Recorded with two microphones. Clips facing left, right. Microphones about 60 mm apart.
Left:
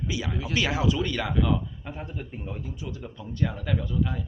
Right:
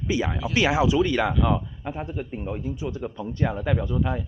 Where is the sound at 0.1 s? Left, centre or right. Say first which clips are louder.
Right 9 dB; right.